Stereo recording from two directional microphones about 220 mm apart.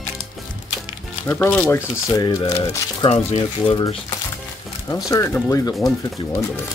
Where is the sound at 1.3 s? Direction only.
5° left (ahead or behind); by 3.9 s 25° left (ahead or behind).